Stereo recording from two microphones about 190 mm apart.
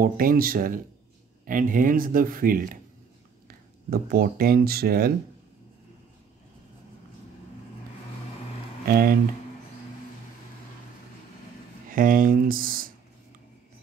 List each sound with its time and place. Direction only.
0.0 s speech: 50° right (ahead or behind)
8.8 s speech: 55° right (ahead or behind)
11.9 s speech: 50° right (ahead or behind)